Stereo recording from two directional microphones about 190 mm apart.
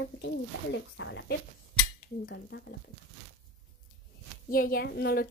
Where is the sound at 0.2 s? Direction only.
75° left (ahead or behind).